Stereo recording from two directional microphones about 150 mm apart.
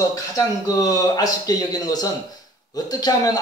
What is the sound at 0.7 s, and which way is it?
Speech, 25° left (ahead or behind).